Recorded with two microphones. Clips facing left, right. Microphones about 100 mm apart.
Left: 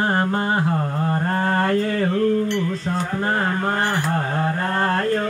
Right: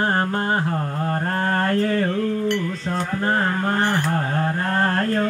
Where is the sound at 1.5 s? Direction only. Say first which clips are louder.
Left 1 dB; 15° left (ahead or behind).